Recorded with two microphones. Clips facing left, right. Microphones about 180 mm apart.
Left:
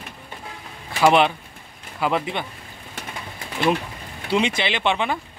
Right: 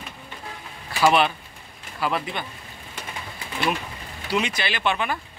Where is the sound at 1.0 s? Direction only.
20° left (ahead or behind).